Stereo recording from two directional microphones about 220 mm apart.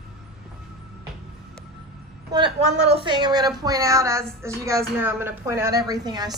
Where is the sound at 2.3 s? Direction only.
25° right (ahead or behind).